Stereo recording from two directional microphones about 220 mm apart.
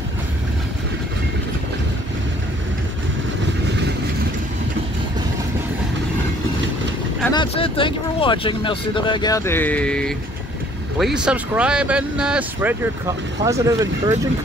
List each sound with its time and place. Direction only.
7.3 s speech: 25° left (ahead or behind); by 14.1 s 15° right (ahead or behind)